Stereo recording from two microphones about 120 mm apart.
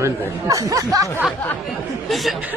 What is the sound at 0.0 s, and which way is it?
Speech, 25° right (ahead or behind).